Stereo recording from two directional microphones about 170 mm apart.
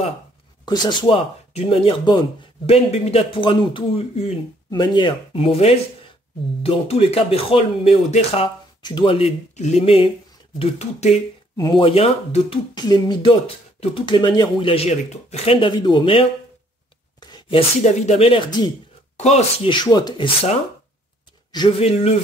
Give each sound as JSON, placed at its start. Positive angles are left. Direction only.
{"t": 0.7, "sound": "speech", "side_deg": 25}
{"t": 11.5, "sound": "speech", "side_deg": 25}
{"t": 19.1, "sound": "speech", "side_deg": 40}
{"t": 21.5, "sound": "speech", "side_deg": 30}